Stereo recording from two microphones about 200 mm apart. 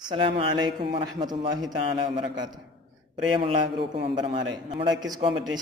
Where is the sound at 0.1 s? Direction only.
25° right (ahead or behind).